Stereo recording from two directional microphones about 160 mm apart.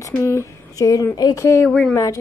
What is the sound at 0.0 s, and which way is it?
Speech, 20° left (ahead or behind).